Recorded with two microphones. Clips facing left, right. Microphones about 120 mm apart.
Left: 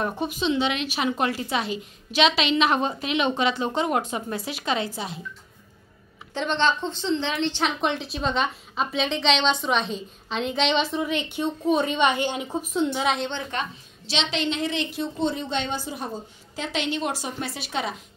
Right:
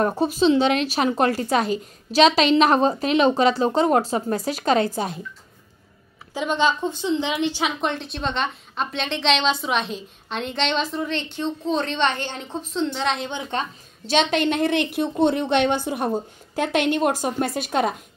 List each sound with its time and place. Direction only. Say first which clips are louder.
0.0 s speech: right 7 dB; 35° right (ahead or behind)
6.3 s a woman's voice: right 2 dB; 10° right (ahead or behind)
13.5 s speech: right 5 dB; 30° right (ahead or behind)
14.0 s a woman's voice: right 7 dB; 50° right (ahead or behind)